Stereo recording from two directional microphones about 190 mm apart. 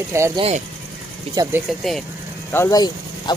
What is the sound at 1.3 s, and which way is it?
Speech, 20° right (ahead or behind).